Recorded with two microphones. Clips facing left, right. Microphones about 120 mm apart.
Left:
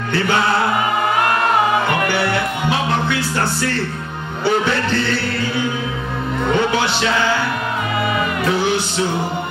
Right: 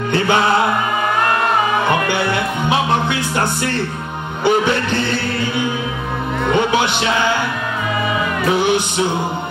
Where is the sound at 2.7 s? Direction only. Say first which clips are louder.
Right 3 dB; 20° right (ahead or behind).